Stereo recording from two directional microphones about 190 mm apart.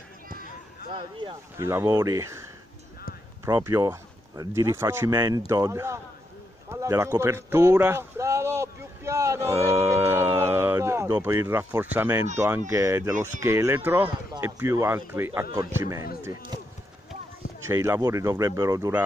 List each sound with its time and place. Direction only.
0.9 s speech: 25° right (ahead or behind)
1.6 s speech: 15° right (ahead or behind)
3.4 s a man's voice: 15° right (ahead or behind)
17.6 s speech: 15° right (ahead or behind)